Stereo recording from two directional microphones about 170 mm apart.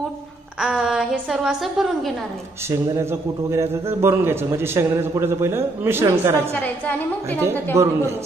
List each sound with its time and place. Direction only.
0.6 s a woman's voice: 5° right (ahead or behind)
3.0 s a man's voice: 15° right (ahead or behind)
6.5 s a woman's voice: 10° left (ahead or behind)
7.7 s a man's voice: 15° right (ahead or behind)